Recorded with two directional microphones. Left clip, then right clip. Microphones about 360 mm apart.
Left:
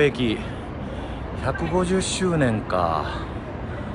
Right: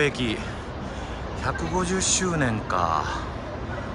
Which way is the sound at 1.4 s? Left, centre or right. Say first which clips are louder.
Left 3 dB; centre.